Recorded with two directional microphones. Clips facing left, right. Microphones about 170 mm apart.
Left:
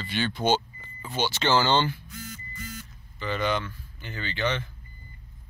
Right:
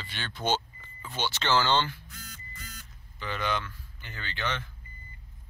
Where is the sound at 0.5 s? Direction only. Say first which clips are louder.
Left 5 dB; 15° left (ahead or behind).